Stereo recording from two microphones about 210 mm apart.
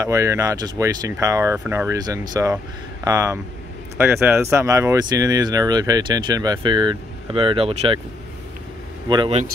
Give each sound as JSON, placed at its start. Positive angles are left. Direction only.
{"t": 0.0, "sound": "speech", "side_deg": -15}
{"t": 9.1, "sound": "speech", "side_deg": -25}